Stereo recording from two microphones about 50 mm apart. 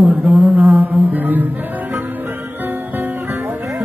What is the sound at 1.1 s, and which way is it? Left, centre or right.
Speech, right.